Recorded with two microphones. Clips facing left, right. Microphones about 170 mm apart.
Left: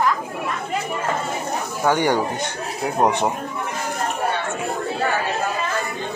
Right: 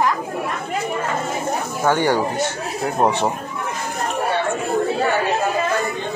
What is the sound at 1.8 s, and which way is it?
Speech, 15° left (ahead or behind).